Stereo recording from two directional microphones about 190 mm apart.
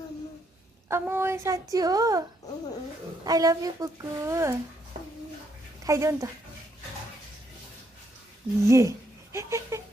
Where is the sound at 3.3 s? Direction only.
20° right (ahead or behind).